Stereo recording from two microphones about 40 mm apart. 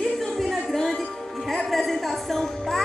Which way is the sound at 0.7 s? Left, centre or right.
Centre.